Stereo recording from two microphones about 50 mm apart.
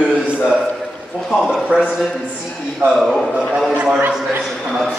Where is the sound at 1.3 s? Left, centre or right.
Centre.